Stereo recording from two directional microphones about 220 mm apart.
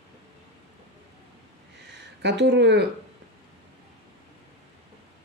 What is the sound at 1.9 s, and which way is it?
Speech, 55° right (ahead or behind).